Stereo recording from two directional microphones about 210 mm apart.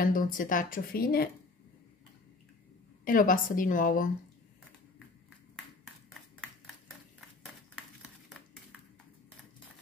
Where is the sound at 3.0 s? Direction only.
40° left (ahead or behind).